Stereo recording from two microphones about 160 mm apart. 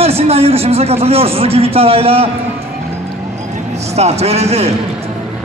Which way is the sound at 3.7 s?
45° right (ahead or behind).